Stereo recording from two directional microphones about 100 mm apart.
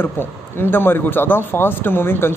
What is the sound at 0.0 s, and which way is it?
Speech, 20° left (ahead or behind).